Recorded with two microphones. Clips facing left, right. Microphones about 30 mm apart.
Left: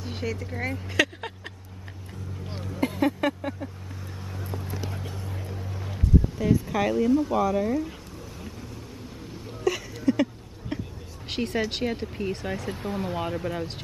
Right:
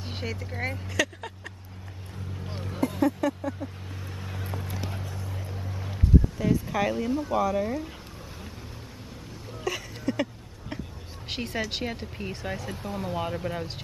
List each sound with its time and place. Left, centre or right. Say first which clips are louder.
0.1 s vehicle: left 3 dB; centre
0.4 s speech: left 1 dB; centre
0.9 s vehicle: left 4 dB; left
3.0 s speech: even; left
4.2 s vehicle: left 1 dB; right
5.5 s speech: left 1 dB; centre
9.7 s a sound: left 6 dB; centre
11.2 s speech: left 4 dB; centre
12.9 s speech: even; left
13.2 s speech: left 1 dB; centre